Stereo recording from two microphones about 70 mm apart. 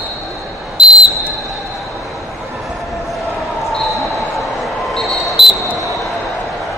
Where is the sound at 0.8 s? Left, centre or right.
Centre.